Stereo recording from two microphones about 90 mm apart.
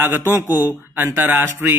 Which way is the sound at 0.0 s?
25° right (ahead or behind).